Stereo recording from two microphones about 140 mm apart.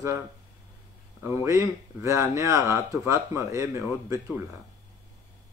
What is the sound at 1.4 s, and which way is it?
Speech, 20° right (ahead or behind).